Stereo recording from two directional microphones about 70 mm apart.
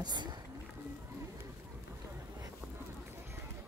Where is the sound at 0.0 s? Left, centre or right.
Right.